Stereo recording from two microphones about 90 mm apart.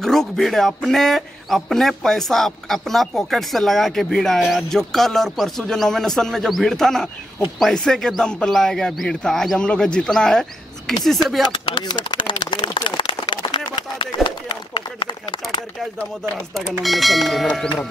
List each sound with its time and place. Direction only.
0.0 s speech: 5° left (ahead or behind)
11.4 s a sound: 65° left (ahead or behind)
16.8 s speech: centre (ahead or behind)